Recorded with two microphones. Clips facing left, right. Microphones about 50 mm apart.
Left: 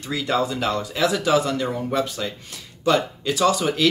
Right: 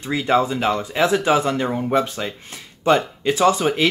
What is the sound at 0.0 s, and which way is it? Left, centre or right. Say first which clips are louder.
Speech: right 4 dB; right.